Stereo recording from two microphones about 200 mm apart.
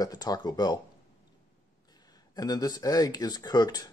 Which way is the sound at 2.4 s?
20° left (ahead or behind).